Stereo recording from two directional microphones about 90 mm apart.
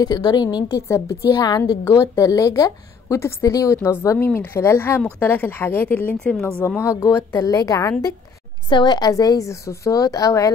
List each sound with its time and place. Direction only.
0.0 s a woman's voice: 50° left (ahead or behind)
0.7 s a woman's voice: 35° left (ahead or behind); by 6.3 s 20° left (ahead or behind)
6.8 s a woman's voice: 30° left (ahead or behind)
8.6 s a woman's voice: 55° left (ahead or behind); by 10.5 s 40° left (ahead or behind)